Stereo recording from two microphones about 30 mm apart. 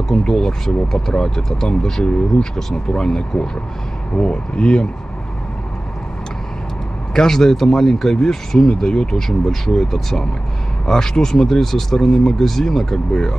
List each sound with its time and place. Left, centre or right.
0.1 s speech: centre; by 4.8 s left
7.2 s speech: centre
9.8 s speech: centre
10.9 s speech: centre